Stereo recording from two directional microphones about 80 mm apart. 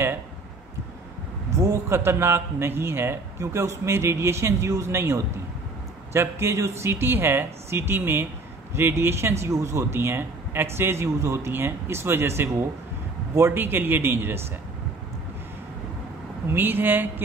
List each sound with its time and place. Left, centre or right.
1.6 s a man's voice: right
16.4 s a man's voice: right